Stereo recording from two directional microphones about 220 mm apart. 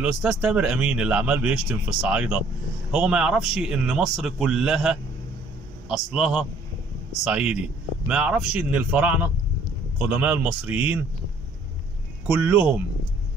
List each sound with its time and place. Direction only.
0.0 s a man's voice: 5° right (ahead or behind)
12.3 s a man's voice: 10° right (ahead or behind)